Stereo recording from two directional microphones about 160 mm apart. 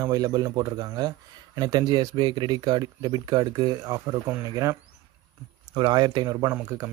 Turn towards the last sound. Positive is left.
turn(degrees=-20)  # may be behind; listen again after turning